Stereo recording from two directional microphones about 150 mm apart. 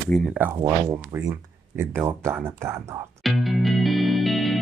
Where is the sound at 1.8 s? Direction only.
15° right (ahead or behind).